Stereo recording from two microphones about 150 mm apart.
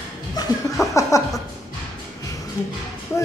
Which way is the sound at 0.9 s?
20° left (ahead or behind).